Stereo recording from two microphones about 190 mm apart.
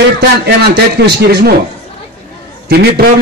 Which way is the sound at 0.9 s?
55° right (ahead or behind).